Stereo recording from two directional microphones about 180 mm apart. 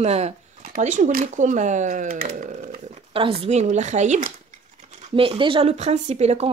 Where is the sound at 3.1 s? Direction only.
30° right (ahead or behind).